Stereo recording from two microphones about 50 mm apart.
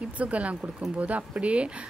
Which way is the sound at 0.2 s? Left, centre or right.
Right.